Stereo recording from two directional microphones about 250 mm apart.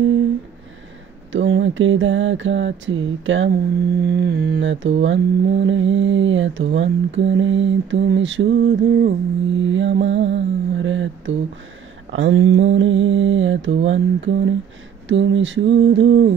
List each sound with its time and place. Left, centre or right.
1.3 s mantra: right